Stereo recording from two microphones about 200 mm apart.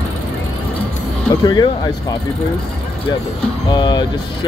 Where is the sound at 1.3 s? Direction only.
20° left (ahead or behind).